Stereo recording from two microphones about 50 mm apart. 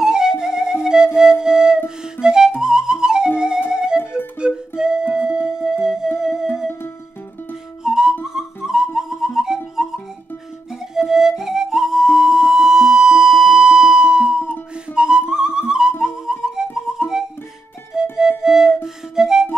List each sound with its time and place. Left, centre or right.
0.0 s music: centre
0.8 s flute: centre
2.1 s music: centre
7.8 s music: centre
11.0 s music: centre